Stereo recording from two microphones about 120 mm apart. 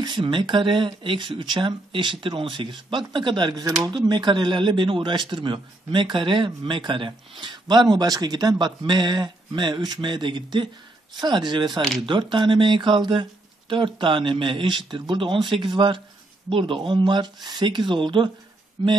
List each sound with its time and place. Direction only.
0.0 s speech: 40° right (ahead or behind)